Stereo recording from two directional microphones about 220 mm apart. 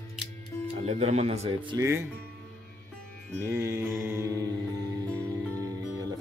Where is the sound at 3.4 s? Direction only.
10° right (ahead or behind).